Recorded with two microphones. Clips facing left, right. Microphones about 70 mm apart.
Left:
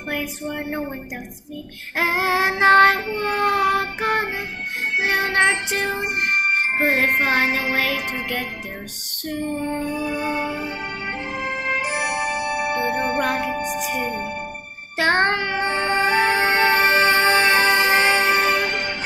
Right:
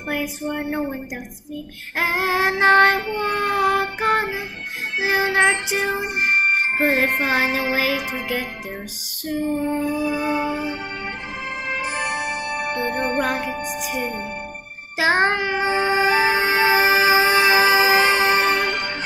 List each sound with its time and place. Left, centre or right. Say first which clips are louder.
0.1 s music: right 2 dB; centre
2.0 s music: left 1 dB; centre
11.8 s music: left 1 dB; right
12.7 s music: right 1 dB; centre
15.0 s child singing: even; centre
18.4 s music: even; right